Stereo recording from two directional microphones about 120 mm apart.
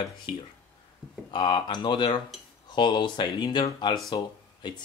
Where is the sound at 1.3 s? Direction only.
40° left (ahead or behind).